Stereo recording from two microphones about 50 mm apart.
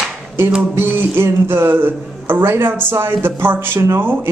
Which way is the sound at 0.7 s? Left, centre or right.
Right.